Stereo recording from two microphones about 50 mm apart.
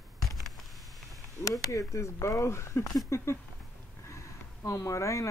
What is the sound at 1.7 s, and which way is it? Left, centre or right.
Speech, left.